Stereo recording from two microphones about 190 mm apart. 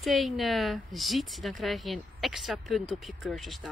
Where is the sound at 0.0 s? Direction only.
Centre (ahead or behind).